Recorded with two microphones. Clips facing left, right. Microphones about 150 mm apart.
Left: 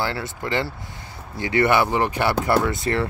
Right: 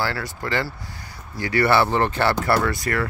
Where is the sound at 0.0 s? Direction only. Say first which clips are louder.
Even; 20° left (ahead or behind).